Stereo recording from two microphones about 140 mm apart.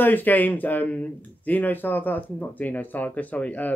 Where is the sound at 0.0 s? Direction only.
15° left (ahead or behind).